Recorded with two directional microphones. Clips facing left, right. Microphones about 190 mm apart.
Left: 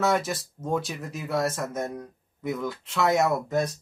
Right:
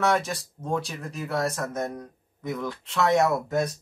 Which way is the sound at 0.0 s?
5° left (ahead or behind).